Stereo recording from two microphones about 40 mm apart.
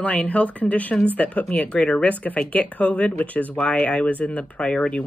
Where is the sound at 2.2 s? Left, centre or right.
Left.